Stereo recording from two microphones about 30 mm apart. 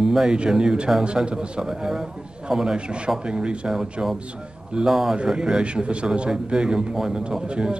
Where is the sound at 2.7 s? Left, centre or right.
Right.